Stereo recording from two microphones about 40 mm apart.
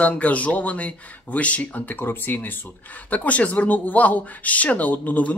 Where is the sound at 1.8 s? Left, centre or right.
Left.